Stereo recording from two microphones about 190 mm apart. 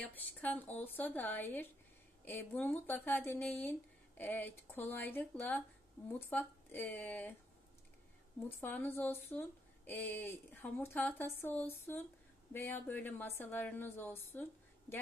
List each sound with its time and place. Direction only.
0.0 s speech: 10° left (ahead or behind)
8.5 s speech: 10° left (ahead or behind)